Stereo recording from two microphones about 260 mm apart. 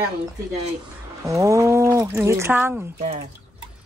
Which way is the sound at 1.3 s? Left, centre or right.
Centre.